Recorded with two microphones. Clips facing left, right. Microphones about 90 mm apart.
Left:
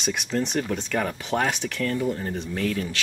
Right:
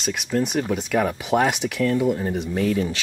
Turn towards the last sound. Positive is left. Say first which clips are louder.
# right 5 dB
turn(degrees=-15)  # may be behind; listen again after turning